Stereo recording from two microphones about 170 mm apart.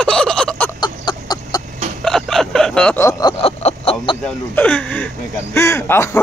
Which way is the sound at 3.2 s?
35° left (ahead or behind).